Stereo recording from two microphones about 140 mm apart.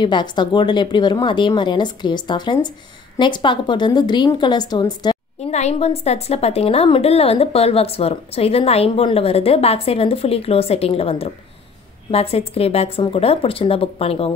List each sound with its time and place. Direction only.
0.0 s speech: 35° left (ahead or behind)
5.5 s a woman's voice: 50° left (ahead or behind)